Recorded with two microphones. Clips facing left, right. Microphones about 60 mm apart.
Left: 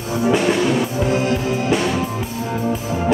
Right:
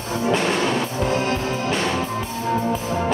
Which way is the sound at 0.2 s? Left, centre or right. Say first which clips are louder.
Left 4 dB; centre.